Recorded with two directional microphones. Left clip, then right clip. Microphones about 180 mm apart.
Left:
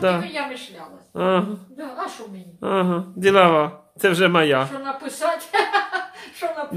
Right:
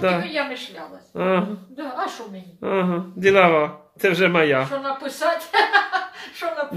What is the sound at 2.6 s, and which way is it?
Speech, 15° left (ahead or behind).